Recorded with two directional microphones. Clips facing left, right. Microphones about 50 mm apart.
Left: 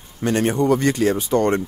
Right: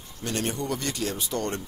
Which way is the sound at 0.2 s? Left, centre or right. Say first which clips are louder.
Left 11 dB; left.